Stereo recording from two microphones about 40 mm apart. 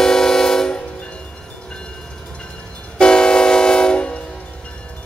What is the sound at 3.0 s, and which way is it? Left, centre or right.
Train, left.